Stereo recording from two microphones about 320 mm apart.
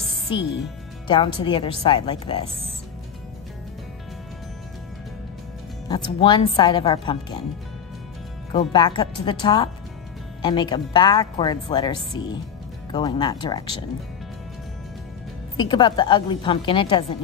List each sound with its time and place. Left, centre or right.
1.0 s speech: centre
5.9 s speech: centre
8.5 s speech: centre
15.5 s speech: centre